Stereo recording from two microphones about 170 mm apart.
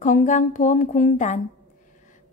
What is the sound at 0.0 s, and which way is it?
A woman's voice, 50° left (ahead or behind).